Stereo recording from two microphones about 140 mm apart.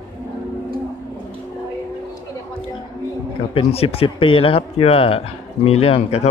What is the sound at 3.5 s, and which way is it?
Speech, 40° left (ahead or behind).